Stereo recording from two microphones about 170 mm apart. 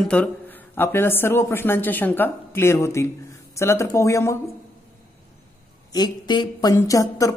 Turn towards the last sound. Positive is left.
turn(degrees=20)  # may be behind; listen again after turning